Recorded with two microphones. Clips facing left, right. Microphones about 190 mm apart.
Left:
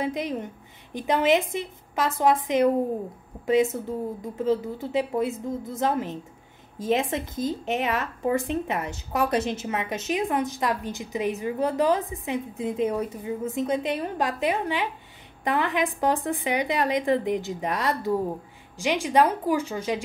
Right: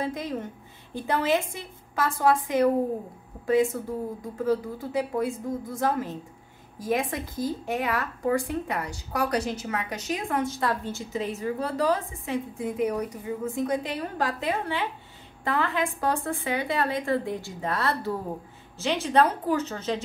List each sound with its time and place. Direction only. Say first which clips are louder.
0.0 s a woman's voice: left 2 dB; 20° left (ahead or behind)